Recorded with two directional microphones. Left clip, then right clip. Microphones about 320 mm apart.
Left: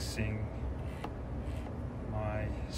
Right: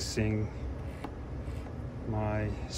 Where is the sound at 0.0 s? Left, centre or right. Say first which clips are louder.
Right 6 dB; centre.